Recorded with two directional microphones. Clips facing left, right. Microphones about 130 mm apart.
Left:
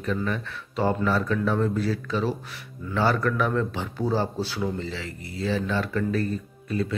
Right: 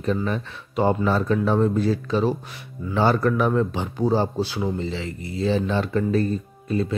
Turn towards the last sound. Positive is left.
turn(degrees=-25)  # may be behind; listen again after turning